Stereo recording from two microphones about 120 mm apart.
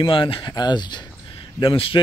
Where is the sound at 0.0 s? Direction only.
45° left (ahead or behind).